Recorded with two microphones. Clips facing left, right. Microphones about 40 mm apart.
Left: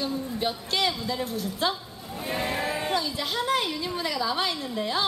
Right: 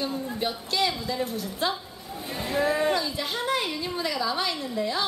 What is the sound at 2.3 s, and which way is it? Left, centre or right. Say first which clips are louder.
Cattle: right 3 dB; left.